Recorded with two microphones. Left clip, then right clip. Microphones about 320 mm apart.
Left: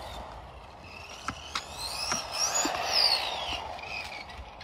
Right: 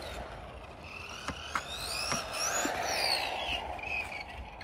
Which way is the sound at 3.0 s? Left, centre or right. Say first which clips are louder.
Left 4 dB; left.